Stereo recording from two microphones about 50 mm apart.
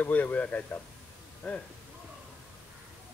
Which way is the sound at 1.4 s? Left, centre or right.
Centre.